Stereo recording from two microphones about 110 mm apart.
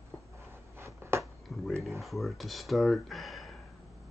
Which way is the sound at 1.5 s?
Centre (ahead or behind).